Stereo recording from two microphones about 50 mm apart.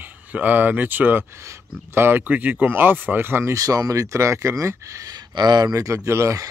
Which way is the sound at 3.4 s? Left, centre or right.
Right.